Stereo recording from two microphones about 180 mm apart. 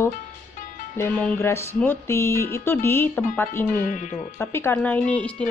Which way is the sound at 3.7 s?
45° left (ahead or behind).